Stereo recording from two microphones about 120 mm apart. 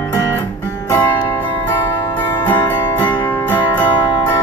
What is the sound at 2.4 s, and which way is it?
Music, 15° left (ahead or behind).